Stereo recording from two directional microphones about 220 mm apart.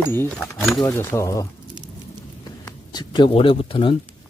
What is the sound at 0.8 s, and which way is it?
Speech, 10° left (ahead or behind).